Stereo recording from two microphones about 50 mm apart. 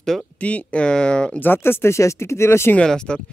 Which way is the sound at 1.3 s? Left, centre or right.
Left.